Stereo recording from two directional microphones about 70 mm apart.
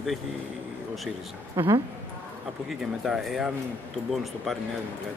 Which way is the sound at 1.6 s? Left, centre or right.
Right.